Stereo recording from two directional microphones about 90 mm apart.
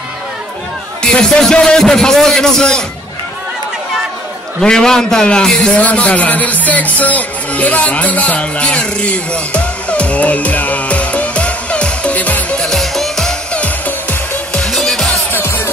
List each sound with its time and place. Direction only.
1.0 s a man's voice: 10° left (ahead or behind)
4.6 s a man's voice: 5° left (ahead or behind)
14.5 s music: 5° left (ahead or behind)
15.3 s music: 25° left (ahead or behind)